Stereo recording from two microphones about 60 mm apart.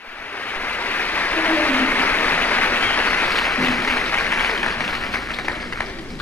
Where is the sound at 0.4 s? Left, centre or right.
Left.